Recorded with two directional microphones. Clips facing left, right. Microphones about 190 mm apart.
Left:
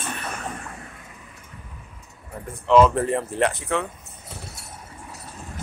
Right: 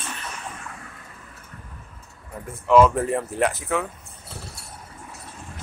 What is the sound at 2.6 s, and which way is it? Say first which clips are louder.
Speech: even; 5° right (ahead or behind).